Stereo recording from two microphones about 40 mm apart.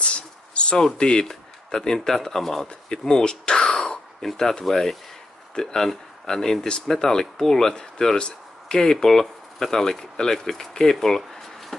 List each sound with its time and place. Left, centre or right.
0.0 s a sound: left
0.7 s speech: centre
8.2 s speech: left
8.9 s speech: centre